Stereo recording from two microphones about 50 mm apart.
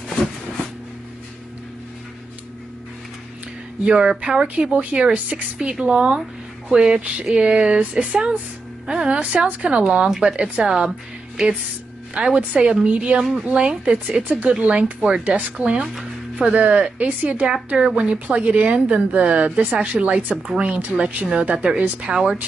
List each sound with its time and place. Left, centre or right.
3.8 s a woman's voice: centre
12.4 s a woman's voice: right
15.7 s speech: centre
16.3 s a woman's voice: right